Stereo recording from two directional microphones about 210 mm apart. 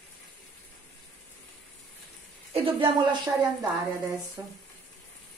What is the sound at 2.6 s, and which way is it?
Speech, 25° right (ahead or behind).